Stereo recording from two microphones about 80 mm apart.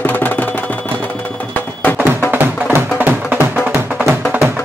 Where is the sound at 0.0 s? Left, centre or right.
Centre.